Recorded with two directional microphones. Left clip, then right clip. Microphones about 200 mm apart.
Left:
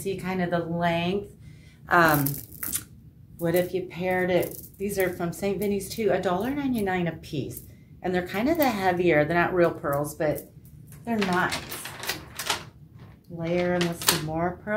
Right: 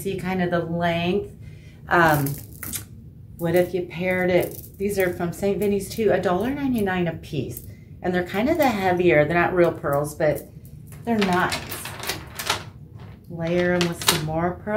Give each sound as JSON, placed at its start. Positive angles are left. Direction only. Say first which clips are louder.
{"t": 0.0, "sound": "speech", "louder": "right 3 dB", "side_deg": 20}
{"t": 3.3, "sound": "speech", "louder": "right 4 dB", "side_deg": 25}
{"t": 11.4, "sound": "a sound", "louder": "right 3 dB", "side_deg": -5}
{"t": 13.4, "sound": "speech", "louder": "right 4 dB", "side_deg": 20}
{"t": 13.7, "sound": "speech", "louder": "right 3 dB", "side_deg": -5}
{"t": 14.3, "sound": "speech", "louder": "right 3 dB", "side_deg": 20}